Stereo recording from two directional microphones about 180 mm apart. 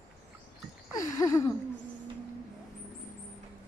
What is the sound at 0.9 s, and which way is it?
Speech, 20° left (ahead or behind).